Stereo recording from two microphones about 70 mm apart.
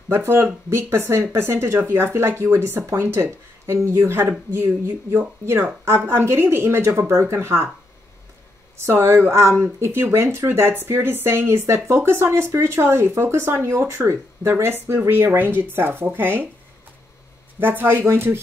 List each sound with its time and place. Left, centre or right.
0.1 s speech: right
8.7 s speech: right
17.6 s speech: right